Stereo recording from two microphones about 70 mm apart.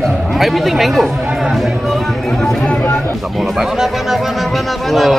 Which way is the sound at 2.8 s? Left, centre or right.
Left.